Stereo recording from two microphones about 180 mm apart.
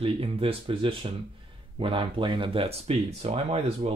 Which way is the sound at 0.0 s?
30° right (ahead or behind).